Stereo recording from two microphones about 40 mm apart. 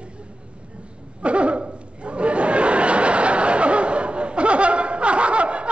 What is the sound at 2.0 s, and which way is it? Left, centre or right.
Snicker, right.